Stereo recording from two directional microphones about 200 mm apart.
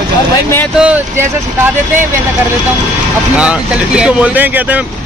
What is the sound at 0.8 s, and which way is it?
Speech, 5° right (ahead or behind).